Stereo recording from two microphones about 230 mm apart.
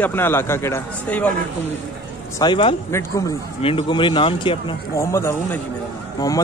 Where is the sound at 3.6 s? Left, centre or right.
Left.